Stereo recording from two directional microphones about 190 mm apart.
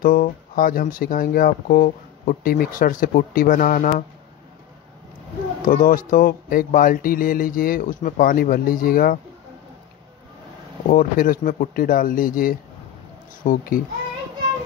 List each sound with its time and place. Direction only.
0.0 s speech: 50° left (ahead or behind)
5.7 s speech: 45° left (ahead or behind)
10.9 s speech: 45° left (ahead or behind)